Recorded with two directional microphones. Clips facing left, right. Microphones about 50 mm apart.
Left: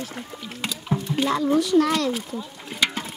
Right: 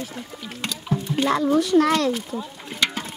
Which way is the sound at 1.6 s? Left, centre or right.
Right.